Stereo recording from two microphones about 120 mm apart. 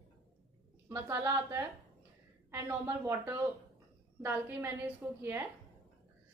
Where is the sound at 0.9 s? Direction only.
20° right (ahead or behind).